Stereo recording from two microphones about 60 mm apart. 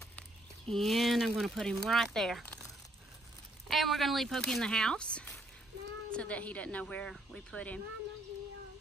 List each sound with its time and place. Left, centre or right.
0.7 s speech: centre
3.6 s speech: centre; by 7.8 s left